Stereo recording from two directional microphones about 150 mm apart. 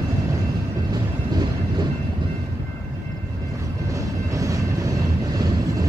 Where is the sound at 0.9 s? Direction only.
25° right (ahead or behind).